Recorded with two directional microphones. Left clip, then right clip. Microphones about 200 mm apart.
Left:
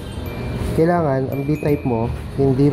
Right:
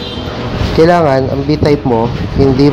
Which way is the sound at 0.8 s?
Centre (ahead or behind).